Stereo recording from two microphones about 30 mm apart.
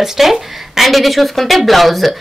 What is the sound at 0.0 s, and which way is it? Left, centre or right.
Speech, centre.